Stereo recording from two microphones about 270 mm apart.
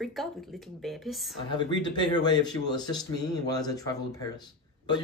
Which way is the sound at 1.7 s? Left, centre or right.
Centre.